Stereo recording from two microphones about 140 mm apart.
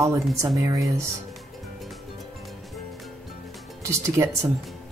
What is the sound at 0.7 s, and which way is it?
Speech, 20° right (ahead or behind).